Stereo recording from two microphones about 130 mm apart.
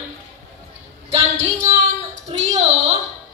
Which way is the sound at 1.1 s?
55° right (ahead or behind).